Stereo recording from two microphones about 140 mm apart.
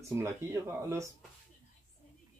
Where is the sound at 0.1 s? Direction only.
20° right (ahead or behind).